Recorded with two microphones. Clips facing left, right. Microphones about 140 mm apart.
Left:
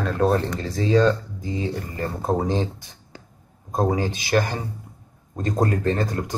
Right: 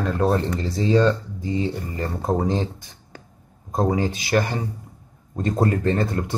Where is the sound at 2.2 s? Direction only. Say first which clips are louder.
Even; 10° left (ahead or behind).